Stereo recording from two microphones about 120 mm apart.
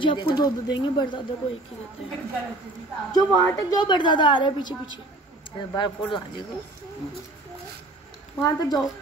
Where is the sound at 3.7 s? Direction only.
40° left (ahead or behind).